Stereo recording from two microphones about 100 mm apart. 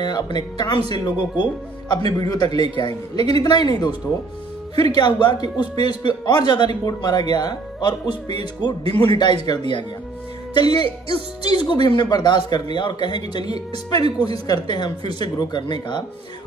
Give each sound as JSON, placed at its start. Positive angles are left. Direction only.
{"t": 0.0, "sound": "speech", "side_deg": 45}
{"t": 1.9, "sound": "speech", "side_deg": 40}